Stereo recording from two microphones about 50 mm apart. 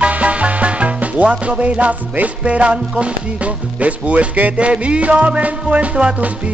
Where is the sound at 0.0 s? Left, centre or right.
Right.